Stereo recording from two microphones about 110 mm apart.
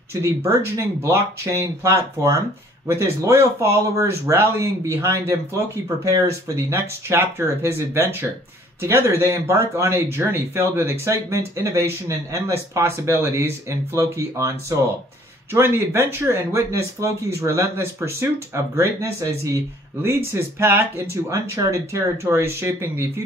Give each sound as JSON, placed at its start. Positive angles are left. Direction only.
{"t": 0.1, "sound": "speech", "side_deg": -25}